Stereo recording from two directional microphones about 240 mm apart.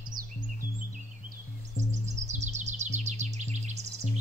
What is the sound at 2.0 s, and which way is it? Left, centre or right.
Bird vocalization, right.